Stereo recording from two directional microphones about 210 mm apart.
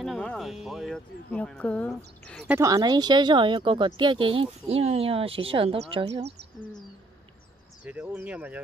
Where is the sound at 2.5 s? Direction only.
15° right (ahead or behind).